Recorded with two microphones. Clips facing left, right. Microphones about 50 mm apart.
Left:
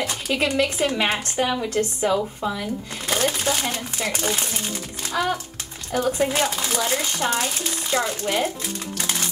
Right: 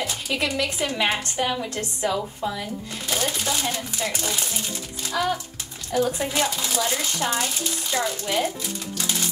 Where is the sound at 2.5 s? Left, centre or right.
Left.